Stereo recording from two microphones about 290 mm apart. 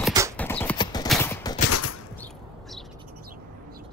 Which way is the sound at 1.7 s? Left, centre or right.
Left.